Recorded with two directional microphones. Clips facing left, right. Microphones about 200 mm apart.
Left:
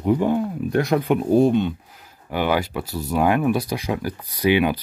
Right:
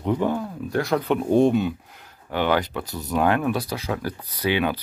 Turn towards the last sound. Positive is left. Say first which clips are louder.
# left 4 dB
turn(degrees=15)  # may be behind; listen again after turning